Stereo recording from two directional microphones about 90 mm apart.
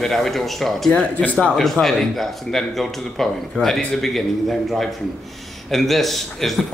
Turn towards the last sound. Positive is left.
turn(degrees=0)  # may be behind; listen again after turning